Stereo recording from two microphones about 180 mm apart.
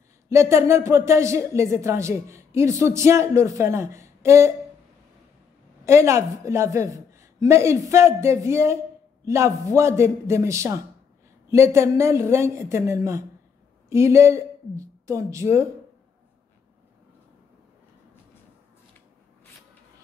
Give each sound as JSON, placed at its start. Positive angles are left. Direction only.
{"t": 0.3, "sound": "speech", "side_deg": -15}
{"t": 5.9, "sound": "a woman's voice", "side_deg": -15}